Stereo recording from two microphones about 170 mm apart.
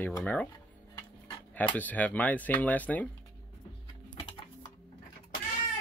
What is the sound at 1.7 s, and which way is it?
Speech, 10° left (ahead or behind).